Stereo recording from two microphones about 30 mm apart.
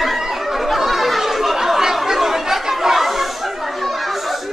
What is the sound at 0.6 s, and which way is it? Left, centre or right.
Chatter, centre.